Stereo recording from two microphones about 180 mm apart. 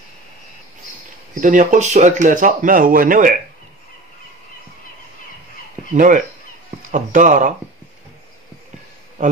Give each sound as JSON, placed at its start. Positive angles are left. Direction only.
{"t": 1.4, "sound": "speech", "side_deg": -45}
{"t": 5.9, "sound": "speech", "side_deg": -45}